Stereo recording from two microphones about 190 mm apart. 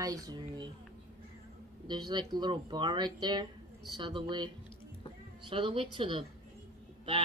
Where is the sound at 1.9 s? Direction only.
25° right (ahead or behind).